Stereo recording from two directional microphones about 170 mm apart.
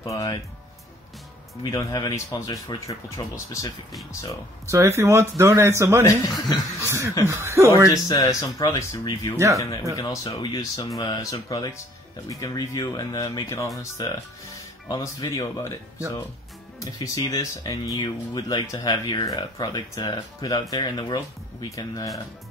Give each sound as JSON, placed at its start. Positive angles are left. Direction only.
{"t": 0.0, "sound": "speech", "side_deg": 20}
{"t": 1.6, "sound": "speech", "side_deg": 20}
{"t": 4.6, "sound": "a man's voice", "side_deg": -15}
{"t": 6.0, "sound": "speech", "side_deg": 20}
{"t": 6.8, "sound": "a man's voice", "side_deg": -15}
{"t": 7.9, "sound": "speech", "side_deg": 20}
{"t": 16.8, "sound": "speech", "side_deg": 20}